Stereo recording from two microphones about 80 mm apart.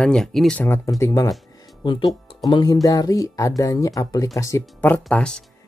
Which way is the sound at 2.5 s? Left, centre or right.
Left.